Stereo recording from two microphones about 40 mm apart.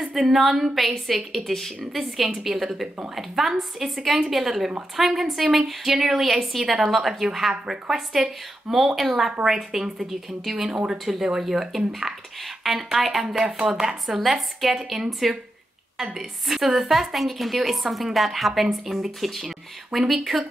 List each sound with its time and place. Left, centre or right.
0.0 s a woman's voice: centre
14.0 s a woman's voice: centre